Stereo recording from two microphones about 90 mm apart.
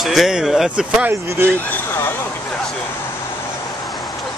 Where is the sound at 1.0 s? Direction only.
25° right (ahead or behind).